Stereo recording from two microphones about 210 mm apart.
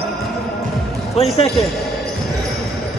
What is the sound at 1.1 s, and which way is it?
Speech, 30° left (ahead or behind).